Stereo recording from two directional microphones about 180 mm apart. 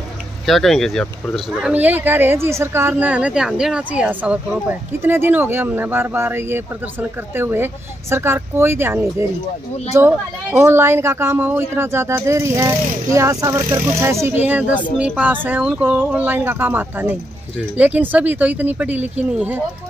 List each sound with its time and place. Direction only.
0.5 s speech: centre (ahead or behind)